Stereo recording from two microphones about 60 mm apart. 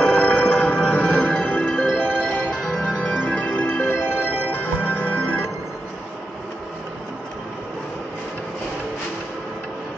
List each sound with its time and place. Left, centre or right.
0.0 s music: centre
2.5 s music: centre
3.0 s music: centre
3.9 s music: left